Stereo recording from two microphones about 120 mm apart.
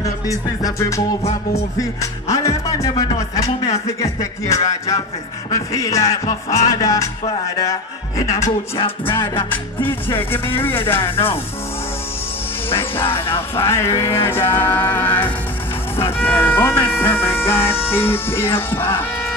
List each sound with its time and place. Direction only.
0.6 s speech: 30° left (ahead or behind)
1.8 s music: 25° left (ahead or behind)
3.6 s speech: 25° left (ahead or behind)
8.2 s music: 30° left (ahead or behind)
8.7 s music: 45° left (ahead or behind)
9.5 s music: 15° left (ahead or behind)
10.5 s speech: 20° left (ahead or behind)
11.0 s music: 45° left (ahead or behind)
12.6 s music: 50° left (ahead or behind)
13.6 s speech: 20° left (ahead or behind)